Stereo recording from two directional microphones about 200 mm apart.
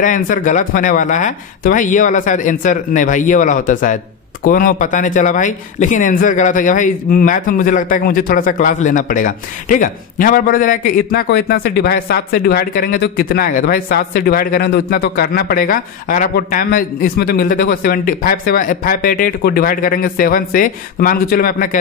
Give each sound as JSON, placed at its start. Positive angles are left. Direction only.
{"t": 0.0, "sound": "speech", "side_deg": 40}